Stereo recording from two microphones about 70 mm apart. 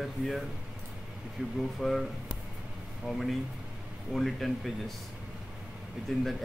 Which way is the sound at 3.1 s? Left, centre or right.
Centre.